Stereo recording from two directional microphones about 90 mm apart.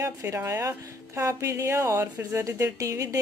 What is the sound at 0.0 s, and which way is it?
Speech, 30° right (ahead or behind).